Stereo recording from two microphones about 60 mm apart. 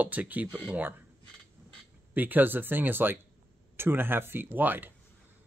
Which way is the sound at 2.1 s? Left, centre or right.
Right.